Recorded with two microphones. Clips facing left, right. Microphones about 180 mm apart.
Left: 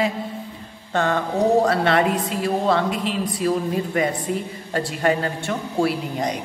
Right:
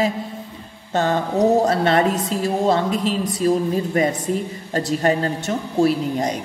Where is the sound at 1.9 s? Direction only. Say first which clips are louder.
Right 1 dB; 40° right (ahead or behind).